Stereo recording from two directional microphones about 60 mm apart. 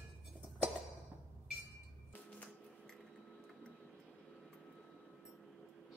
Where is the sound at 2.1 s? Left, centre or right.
Left.